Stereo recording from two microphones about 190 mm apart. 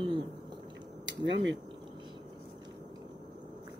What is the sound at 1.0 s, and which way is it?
Speech, 70° right (ahead or behind).